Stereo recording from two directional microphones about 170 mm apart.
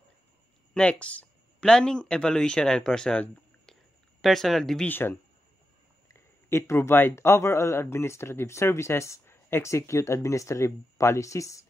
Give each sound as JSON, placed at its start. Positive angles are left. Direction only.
{"t": 0.7, "sound": "speech", "side_deg": 5}
{"t": 6.1, "sound": "speech", "side_deg": 15}